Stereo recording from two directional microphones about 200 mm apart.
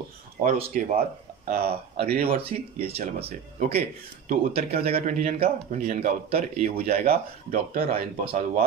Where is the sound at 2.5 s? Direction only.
35° right (ahead or behind).